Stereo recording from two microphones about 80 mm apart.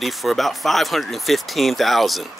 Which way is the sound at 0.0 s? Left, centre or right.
Centre.